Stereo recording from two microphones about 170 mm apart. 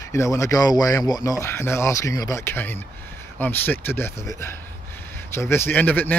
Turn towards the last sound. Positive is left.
turn(degrees=10)  # may be behind; listen again after turning